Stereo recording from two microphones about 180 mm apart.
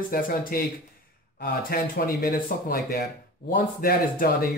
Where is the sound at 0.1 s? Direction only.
55° left (ahead or behind).